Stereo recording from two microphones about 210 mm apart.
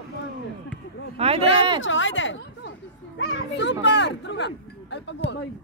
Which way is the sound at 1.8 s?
65° left (ahead or behind).